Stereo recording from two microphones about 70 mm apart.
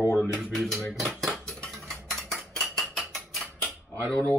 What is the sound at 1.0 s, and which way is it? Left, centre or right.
Cutlery, centre.